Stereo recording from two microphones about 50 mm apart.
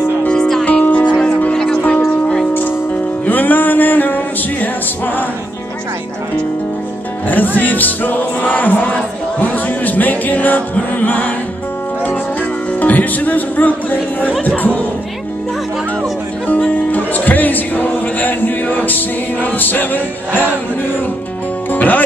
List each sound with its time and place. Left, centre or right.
0.3 s music: centre
0.7 s music: left
3.3 s music: left
7.2 s music: left
12.8 s music: left
16.7 s music: left
21.7 s speech: left